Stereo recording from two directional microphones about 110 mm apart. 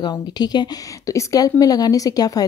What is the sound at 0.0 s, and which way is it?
A woman's voice, 40° left (ahead or behind).